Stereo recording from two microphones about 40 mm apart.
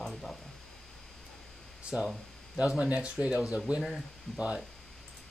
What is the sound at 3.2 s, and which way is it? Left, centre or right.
Speech, right.